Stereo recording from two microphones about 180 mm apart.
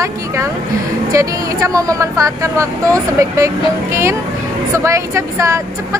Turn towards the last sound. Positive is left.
turn(degrees=-15)  # may be behind; listen again after turning